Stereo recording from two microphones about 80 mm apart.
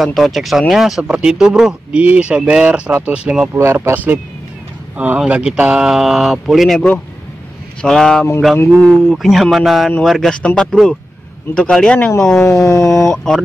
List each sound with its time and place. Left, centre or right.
0.0 s speech: centre
3.5 s speech: right; by 6.8 s centre
7.8 s speech: centre
12.4 s a sound: left
13.1 s speech: centre